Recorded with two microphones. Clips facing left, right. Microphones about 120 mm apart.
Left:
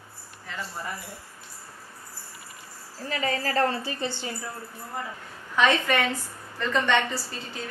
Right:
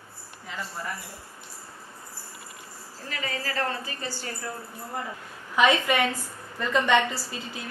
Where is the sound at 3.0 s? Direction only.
35° left (ahead or behind).